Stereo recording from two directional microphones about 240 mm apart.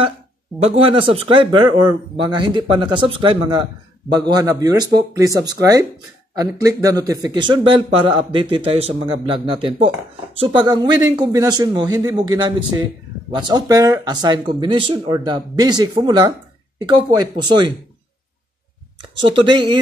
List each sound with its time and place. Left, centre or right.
0.6 s speech: right